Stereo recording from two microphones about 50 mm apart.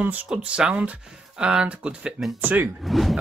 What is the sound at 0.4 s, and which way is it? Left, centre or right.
Speech, right.